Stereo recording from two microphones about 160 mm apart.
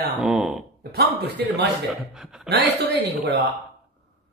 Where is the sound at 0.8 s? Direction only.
75° right (ahead or behind).